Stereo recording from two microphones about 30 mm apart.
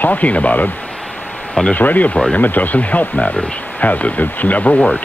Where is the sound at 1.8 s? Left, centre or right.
Left.